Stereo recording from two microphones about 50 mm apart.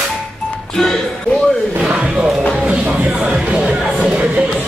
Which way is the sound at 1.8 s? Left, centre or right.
Right.